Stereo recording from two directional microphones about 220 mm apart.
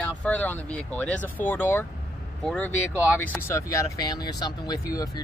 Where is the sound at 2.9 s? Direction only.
5° right (ahead or behind).